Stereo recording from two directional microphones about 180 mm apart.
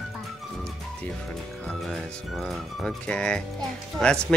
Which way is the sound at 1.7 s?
Centre (ahead or behind).